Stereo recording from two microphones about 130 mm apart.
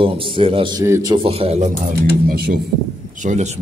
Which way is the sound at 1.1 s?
45° right (ahead or behind).